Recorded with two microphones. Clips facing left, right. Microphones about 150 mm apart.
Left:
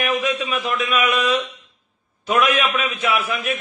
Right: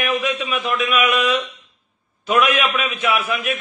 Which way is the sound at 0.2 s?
30° left (ahead or behind).